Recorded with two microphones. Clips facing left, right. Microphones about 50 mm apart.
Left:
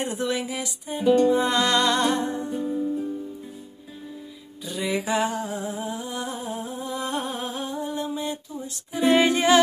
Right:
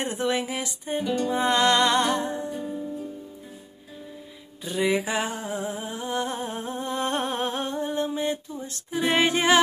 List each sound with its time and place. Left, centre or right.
0.0 s music: right
1.0 s music: left
1.3 s music: right
4.6 s a sound: right